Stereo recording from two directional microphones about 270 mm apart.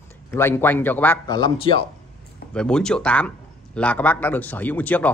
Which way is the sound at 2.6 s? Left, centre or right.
Centre.